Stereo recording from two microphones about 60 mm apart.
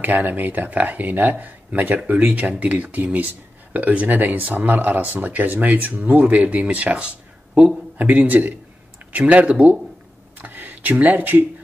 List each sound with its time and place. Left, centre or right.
0.0 s speech: right
8.0 s speech: right